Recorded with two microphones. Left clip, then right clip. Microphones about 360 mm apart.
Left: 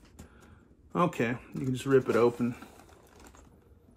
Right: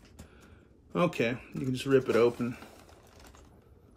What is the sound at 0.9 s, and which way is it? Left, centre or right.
Speech, centre.